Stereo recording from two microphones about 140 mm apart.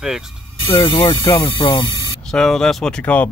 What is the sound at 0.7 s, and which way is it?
Speech, 35° left (ahead or behind).